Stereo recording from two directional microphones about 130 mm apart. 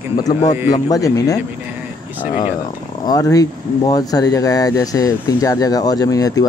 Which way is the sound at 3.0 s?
30° left (ahead or behind).